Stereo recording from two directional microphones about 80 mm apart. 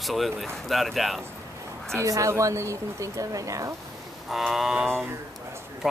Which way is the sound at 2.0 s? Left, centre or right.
Right.